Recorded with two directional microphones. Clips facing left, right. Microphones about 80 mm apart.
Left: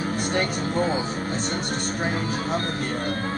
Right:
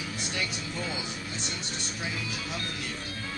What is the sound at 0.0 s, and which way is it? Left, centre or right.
Speech, left.